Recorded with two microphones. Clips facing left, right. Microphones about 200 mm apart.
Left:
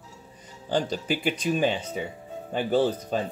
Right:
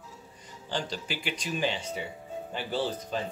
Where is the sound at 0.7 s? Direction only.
50° left (ahead or behind).